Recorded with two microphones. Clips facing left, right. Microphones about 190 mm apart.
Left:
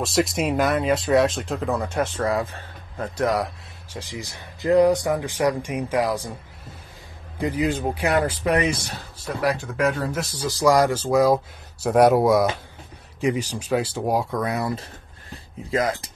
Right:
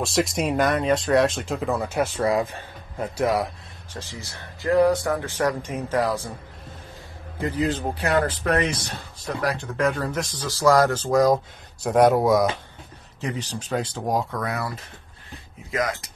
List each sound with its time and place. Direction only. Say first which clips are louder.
0.0 s speech: left 1 dB; centre (ahead or behind)
3.9 s speech: left 3 dB; 15° left (ahead or behind)
7.3 s speech: left 1 dB; 15° left (ahead or behind)
15.7 s speech: left 3 dB; 30° left (ahead or behind)